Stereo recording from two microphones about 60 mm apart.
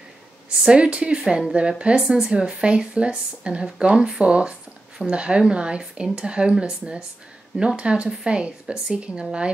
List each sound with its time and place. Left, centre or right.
0.7 s speech: centre